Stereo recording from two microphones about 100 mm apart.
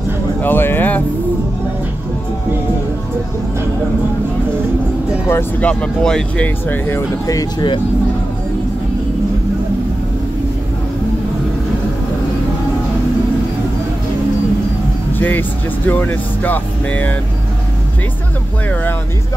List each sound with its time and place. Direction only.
0.4 s speech: 20° left (ahead or behind)
5.3 s speech: 15° left (ahead or behind)
15.1 s speech: 20° left (ahead or behind)